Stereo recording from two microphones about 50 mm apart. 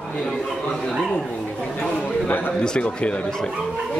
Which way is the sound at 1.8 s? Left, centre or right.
Left.